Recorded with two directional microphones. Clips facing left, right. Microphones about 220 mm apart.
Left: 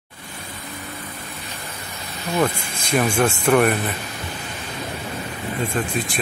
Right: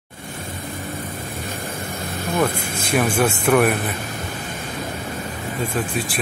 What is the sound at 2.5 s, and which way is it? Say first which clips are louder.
Speech: right 6 dB; 50° right (ahead or behind).